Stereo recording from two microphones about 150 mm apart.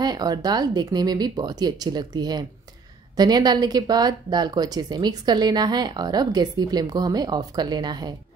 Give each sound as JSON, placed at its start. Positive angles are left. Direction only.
{"t": 0.0, "sound": "speech", "side_deg": -25}